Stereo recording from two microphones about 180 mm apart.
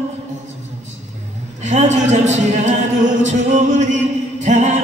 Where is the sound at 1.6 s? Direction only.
40° right (ahead or behind).